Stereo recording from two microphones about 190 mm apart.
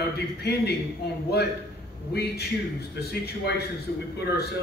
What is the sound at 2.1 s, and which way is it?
A man's voice, 60° left (ahead or behind).